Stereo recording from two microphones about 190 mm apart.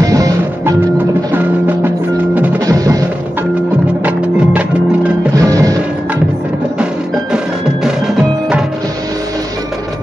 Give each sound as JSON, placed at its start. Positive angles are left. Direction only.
{"t": 0.0, "sound": "music", "side_deg": -20}
{"t": 1.3, "sound": "percussion", "side_deg": -10}
{"t": 4.0, "sound": "music", "side_deg": -5}
{"t": 5.3, "sound": "music", "side_deg": -15}